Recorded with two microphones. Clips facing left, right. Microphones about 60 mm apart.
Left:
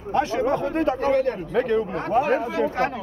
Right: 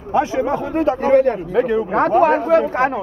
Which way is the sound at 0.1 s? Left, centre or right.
Centre.